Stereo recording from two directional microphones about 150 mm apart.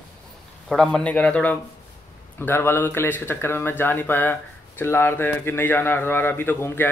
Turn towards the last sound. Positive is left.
turn(degrees=15)  # may be behind; listen again after turning